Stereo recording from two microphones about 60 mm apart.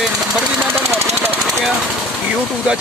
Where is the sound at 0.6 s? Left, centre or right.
Right.